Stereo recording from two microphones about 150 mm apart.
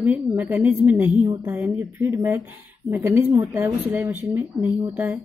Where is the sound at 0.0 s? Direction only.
10° right (ahead or behind).